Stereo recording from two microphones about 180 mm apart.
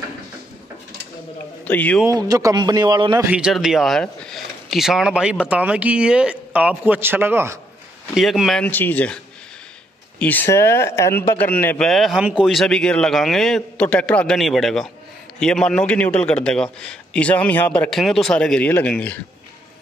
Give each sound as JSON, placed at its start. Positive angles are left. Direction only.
{"t": 1.6, "sound": "a man's voice", "side_deg": 10}
{"t": 2.0, "sound": "a man's voice", "side_deg": -20}
{"t": 3.3, "sound": "speech", "side_deg": -5}
{"t": 8.1, "sound": "speech", "side_deg": 0}